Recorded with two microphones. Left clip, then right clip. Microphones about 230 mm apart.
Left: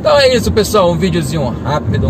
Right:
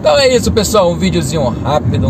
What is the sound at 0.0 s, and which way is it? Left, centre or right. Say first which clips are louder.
Speech: even; centre.